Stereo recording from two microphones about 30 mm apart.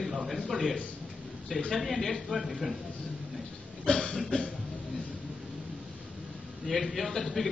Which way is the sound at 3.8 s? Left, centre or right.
Left.